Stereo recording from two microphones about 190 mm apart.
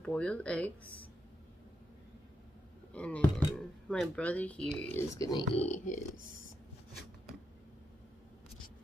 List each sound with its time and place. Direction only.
0.0 s speech: 5° left (ahead or behind)
2.9 s speech: 5° left (ahead or behind)
4.9 s speech: 15° left (ahead or behind)
5.6 s speech: 35° left (ahead or behind)